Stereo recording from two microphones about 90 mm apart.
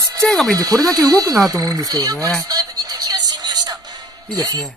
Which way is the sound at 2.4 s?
45° right (ahead or behind).